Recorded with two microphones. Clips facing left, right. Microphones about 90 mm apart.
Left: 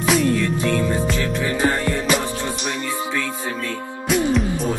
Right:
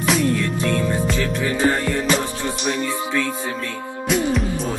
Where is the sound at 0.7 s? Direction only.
5° left (ahead or behind).